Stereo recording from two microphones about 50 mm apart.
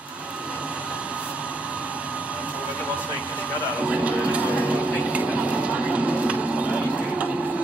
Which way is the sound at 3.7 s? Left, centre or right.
Right.